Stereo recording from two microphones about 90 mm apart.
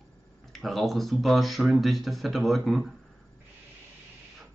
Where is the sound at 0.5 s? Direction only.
Centre (ahead or behind).